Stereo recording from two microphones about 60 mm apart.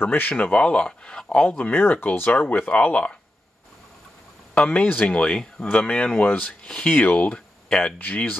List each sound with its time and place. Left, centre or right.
0.0 s speech: left; by 1.7 s centre
1.7 s speech: left
4.6 s speech: left